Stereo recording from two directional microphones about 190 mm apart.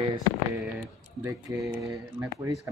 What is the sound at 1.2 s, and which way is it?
Speech, 15° right (ahead or behind).